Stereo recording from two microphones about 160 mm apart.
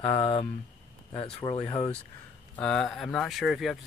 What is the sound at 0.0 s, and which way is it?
Speech, 35° left (ahead or behind).